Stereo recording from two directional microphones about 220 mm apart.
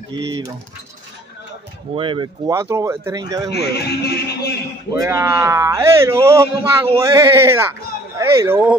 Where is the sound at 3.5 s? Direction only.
45° left (ahead or behind).